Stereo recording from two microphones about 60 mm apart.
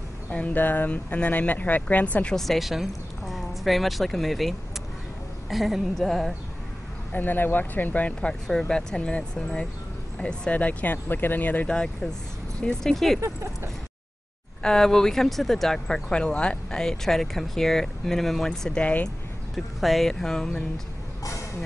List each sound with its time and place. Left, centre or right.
0.3 s speech: left
2.3 s speech: centre
7.1 s speech: left
8.3 s speech: centre; by 11.7 s left
11.7 s speech: centre
12.9 s speech: centre
13.2 s speech: right
14.6 s speech: centre
18.8 s speech: left
19.5 s speech: centre